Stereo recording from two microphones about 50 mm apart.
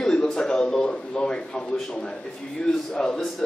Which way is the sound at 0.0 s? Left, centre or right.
Centre.